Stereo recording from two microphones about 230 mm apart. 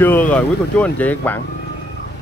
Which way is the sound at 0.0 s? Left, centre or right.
Centre.